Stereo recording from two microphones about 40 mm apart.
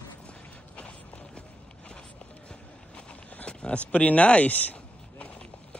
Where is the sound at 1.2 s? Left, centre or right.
Left.